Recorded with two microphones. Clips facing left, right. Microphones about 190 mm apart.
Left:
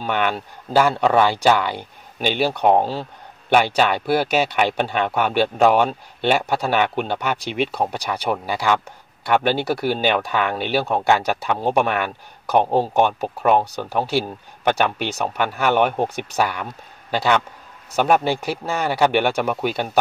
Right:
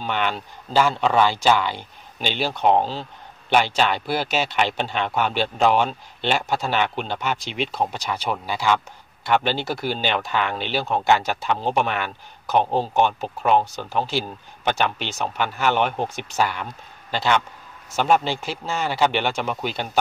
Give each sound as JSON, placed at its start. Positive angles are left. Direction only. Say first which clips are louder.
{"t": 0.0, "sound": "speech", "louder": "left 3 dB", "side_deg": 55}
{"t": 18.0, "sound": "speech", "louder": "left 2 dB", "side_deg": 60}